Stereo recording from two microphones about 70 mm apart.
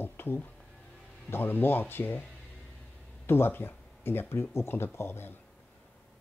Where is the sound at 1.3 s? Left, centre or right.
Left.